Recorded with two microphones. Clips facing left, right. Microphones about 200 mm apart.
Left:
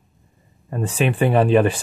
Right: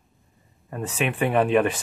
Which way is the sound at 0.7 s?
30° left (ahead or behind).